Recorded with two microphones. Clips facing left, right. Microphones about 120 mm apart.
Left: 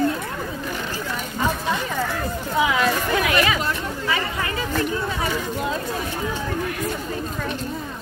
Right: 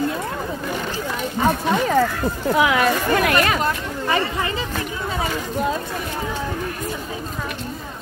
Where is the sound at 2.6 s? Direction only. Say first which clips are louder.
Right 1 dB; 65° right (ahead or behind).